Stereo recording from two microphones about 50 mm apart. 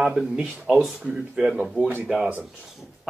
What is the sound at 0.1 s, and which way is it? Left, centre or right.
Speech, centre.